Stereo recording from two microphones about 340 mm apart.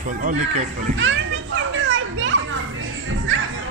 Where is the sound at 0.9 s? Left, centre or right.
Right.